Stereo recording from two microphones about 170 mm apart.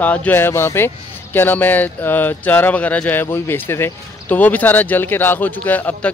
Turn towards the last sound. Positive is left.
turn(degrees=10)  # may be behind; listen again after turning